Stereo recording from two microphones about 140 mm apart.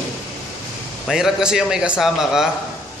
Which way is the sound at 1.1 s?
5° right (ahead or behind).